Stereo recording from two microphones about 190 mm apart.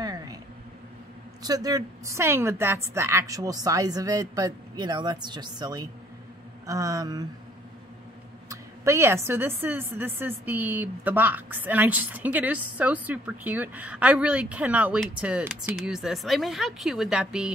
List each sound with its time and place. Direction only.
0.0 s a sound: 20° right (ahead or behind)
1.4 s a woman's voice: 20° right (ahead or behind)
8.5 s a woman's voice: 15° right (ahead or behind)